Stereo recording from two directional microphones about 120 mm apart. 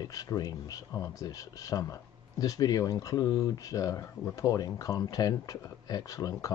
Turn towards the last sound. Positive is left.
turn(degrees=30)  # may be behind; listen again after turning